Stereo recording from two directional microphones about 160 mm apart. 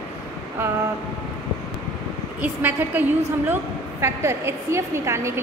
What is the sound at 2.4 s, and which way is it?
A woman's voice, 10° right (ahead or behind).